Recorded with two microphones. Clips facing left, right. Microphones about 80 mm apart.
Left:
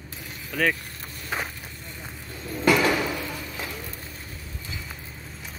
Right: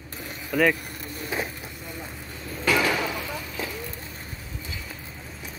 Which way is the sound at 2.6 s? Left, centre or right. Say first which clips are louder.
Left 3 dB; centre.